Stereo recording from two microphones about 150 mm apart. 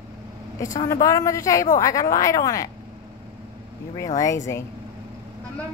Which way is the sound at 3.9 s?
20° left (ahead or behind).